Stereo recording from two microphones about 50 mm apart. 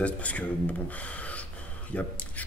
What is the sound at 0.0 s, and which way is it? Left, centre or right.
Speech, left.